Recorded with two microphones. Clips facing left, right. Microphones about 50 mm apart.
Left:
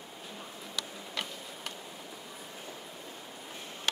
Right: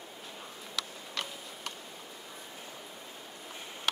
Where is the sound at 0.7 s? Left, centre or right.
Centre.